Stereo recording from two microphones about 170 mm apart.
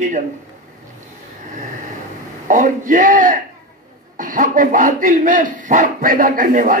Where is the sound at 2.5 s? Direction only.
50° right (ahead or behind).